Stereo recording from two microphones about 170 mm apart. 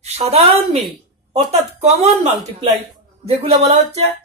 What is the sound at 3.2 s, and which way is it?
Speech, 40° right (ahead or behind).